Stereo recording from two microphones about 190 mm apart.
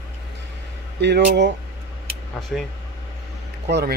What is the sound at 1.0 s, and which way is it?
Speech, 65° right (ahead or behind).